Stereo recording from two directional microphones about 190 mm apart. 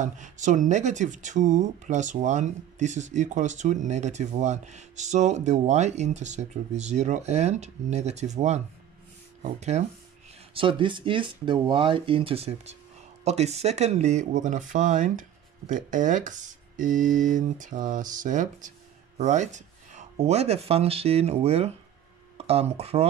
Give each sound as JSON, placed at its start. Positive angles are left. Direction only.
{"t": 0.0, "sound": "speech", "side_deg": -40}